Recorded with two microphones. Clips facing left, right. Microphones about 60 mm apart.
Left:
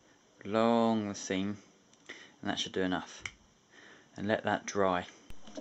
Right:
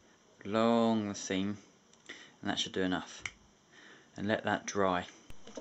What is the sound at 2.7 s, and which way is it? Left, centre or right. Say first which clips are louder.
Speech: left 1 dB; centre.